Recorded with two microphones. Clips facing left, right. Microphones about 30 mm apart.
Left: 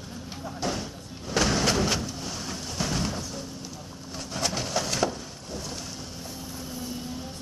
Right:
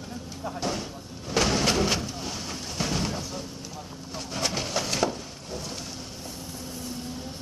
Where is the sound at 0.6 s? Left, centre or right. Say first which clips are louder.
Even; centre.